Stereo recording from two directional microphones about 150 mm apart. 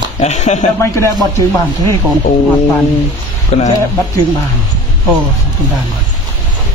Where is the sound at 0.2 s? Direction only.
50° left (ahead or behind).